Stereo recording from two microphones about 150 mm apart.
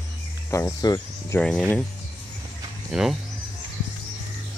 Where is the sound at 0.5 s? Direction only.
25° left (ahead or behind).